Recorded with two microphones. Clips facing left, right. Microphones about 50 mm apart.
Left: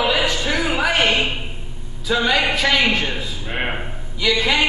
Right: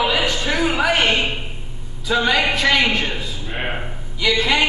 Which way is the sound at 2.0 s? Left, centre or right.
Centre.